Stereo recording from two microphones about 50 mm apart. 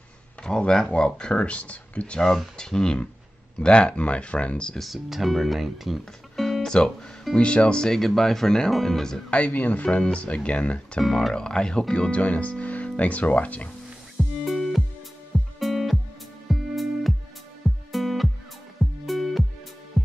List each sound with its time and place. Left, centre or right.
0.4 s speech: centre
2.5 s speech: centre
4.7 s speech: centre
9.3 s speech: left
9.8 s speech: left
11.0 s speech: centre; by 13.7 s left
14.1 s music: centre